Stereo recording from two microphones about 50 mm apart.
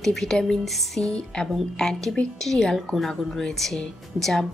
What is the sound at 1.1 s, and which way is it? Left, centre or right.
A woman's voice, centre.